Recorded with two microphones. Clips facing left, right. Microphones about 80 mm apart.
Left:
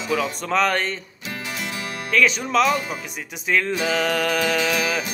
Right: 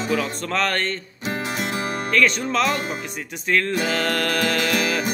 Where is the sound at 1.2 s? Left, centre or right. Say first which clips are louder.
Right 6 dB; right.